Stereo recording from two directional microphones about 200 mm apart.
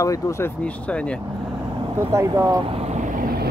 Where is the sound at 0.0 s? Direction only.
15° left (ahead or behind).